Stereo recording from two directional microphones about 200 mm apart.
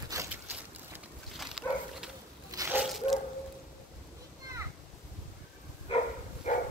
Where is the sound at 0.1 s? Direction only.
15° right (ahead or behind).